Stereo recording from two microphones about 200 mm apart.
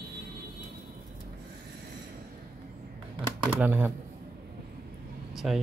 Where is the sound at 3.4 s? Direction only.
5° right (ahead or behind).